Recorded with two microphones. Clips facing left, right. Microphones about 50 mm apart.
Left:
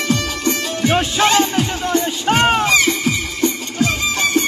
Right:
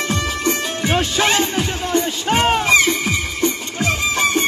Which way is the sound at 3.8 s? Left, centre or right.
Right.